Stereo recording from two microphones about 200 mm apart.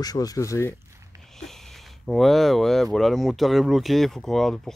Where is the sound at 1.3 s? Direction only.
Centre (ahead or behind).